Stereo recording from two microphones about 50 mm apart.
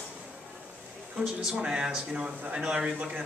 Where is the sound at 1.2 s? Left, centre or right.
Centre.